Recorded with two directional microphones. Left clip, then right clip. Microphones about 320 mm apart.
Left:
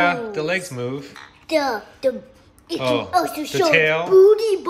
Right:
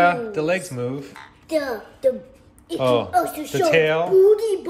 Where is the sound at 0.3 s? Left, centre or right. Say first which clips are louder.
Right 1 dB; centre.